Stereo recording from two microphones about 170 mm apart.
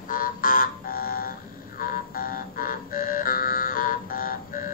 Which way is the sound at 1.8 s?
55° left (ahead or behind).